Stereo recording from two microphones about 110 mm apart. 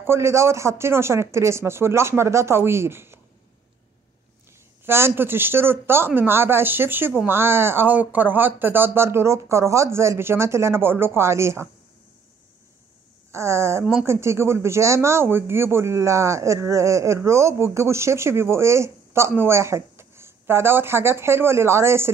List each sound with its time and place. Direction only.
0.0 s speech: 25° right (ahead or behind)
4.8 s speech: 20° right (ahead or behind)
13.3 s speech: 25° right (ahead or behind)